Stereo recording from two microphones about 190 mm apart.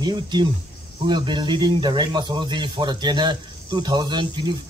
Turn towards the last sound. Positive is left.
turn(degrees=-25)  # may be behind; listen again after turning